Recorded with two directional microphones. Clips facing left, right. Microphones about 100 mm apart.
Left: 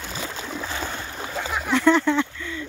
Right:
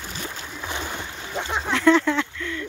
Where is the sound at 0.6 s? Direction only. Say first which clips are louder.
Right 2 dB; 15° right (ahead or behind).